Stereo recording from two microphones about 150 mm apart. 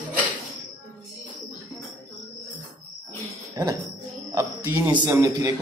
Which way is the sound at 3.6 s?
25° right (ahead or behind).